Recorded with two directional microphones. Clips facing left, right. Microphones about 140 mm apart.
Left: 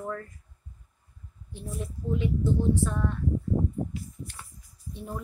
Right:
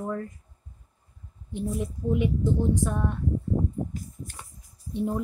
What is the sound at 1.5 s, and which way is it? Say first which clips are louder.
A woman's voice: right 7 dB; 20° right (ahead or behind).